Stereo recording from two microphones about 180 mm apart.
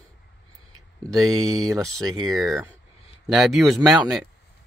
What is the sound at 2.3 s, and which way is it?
Speech, centre (ahead or behind).